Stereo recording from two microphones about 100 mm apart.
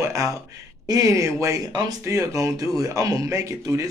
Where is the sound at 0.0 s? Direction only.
35° right (ahead or behind).